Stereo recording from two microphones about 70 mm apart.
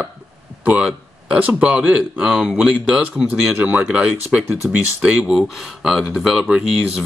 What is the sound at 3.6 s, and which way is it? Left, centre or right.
Speech, right.